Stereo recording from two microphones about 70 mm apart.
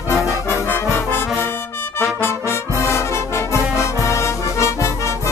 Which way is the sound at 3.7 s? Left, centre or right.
Left.